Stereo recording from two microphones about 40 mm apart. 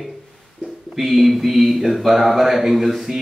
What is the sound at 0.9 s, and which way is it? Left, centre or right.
Speech, centre.